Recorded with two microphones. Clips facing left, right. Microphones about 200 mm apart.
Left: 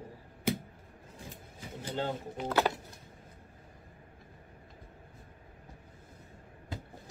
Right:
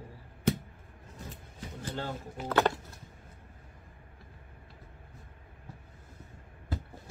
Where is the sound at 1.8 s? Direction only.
20° left (ahead or behind).